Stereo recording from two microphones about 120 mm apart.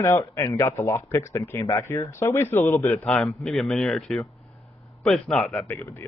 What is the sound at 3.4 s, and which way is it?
Speech, 5° left (ahead or behind).